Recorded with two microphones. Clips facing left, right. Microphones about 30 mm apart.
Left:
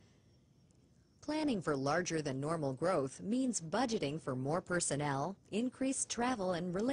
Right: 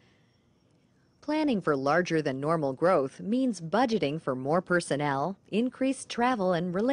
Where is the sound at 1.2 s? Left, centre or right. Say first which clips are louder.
Right 9 dB; right.